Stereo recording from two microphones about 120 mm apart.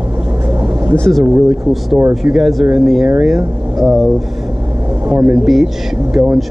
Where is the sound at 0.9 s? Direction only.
5° left (ahead or behind).